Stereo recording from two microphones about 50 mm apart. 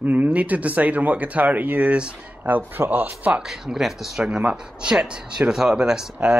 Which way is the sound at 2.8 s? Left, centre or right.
Right.